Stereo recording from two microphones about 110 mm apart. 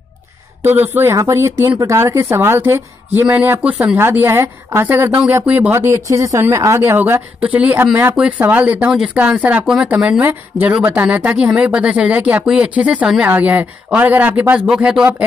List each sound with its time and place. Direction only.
0.7 s a woman's voice: 15° right (ahead or behind)